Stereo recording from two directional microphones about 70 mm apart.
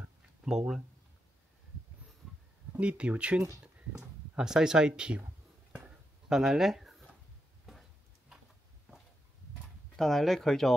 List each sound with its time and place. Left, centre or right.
0.5 s speech: centre
2.7 s speech: centre
5.7 s a sound: centre
9.9 s speech: centre